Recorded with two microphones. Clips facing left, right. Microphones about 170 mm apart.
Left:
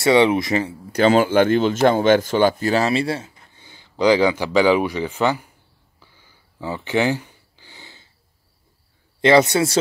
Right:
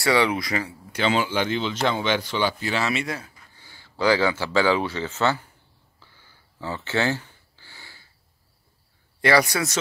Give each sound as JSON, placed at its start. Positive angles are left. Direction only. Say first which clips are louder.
{"t": 0.0, "sound": "speech", "louder": "left 6 dB", "side_deg": 20}
{"t": 0.9, "sound": "speech", "louder": "left 8 dB", "side_deg": 45}
{"t": 5.9, "sound": "a sound", "louder": "left 2 dB", "side_deg": 15}
{"t": 9.2, "sound": "speech", "louder": "left 6 dB", "side_deg": 20}